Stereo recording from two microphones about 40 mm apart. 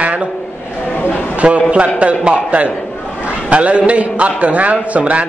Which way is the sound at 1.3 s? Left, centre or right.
Right.